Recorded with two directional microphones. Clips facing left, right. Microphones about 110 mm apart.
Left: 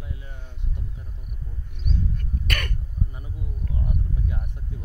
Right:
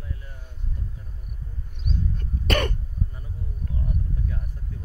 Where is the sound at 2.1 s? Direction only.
25° right (ahead or behind).